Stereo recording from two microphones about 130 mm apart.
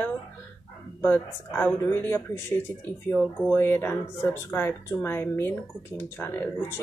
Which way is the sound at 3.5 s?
20° left (ahead or behind).